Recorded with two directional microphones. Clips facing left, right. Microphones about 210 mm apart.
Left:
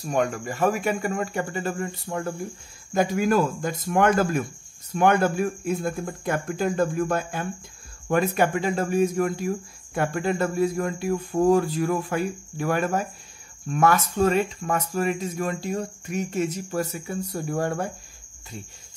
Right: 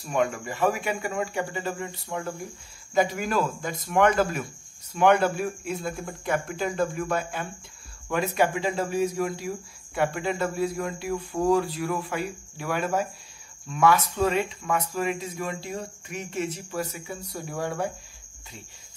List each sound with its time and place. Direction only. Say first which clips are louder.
0.0 s speech: left 1 dB; 40° left (ahead or behind)